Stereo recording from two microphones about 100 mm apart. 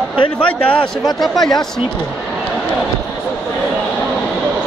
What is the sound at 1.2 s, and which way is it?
Speech, 5° left (ahead or behind).